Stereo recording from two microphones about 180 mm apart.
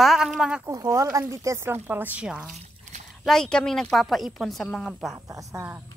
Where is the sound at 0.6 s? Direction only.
20° right (ahead or behind); by 5.2 s centre (ahead or behind).